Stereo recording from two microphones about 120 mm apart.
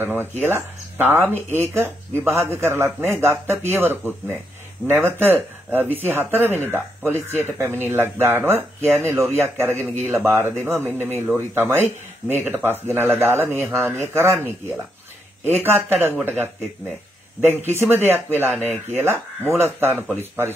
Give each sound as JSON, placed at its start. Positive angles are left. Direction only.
{"t": 0.0, "sound": "speech", "side_deg": -15}
{"t": 10.8, "sound": "speech", "side_deg": 15}
{"t": 11.5, "sound": "speech", "side_deg": -20}
{"t": 17.4, "sound": "speech", "side_deg": -20}